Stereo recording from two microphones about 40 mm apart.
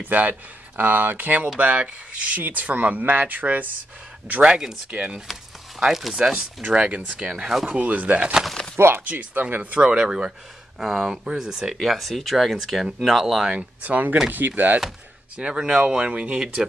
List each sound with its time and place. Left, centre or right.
0.0 s speech: right
4.4 s speech: right
4.9 s speech: right
5.8 s speech: centre
6.6 s speech: right
7.2 s speech: centre
7.7 s speech: right
8.7 s speech: right
9.0 s speech: right
9.6 s speech: right
9.9 s speech: right; by 13.5 s centre
13.8 s speech: right
14.3 s speech: right
15.3 s speech: right